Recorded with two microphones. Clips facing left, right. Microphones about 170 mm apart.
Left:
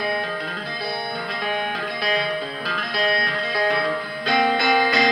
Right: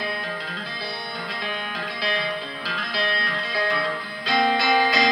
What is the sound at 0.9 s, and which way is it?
Music, 60° left (ahead or behind).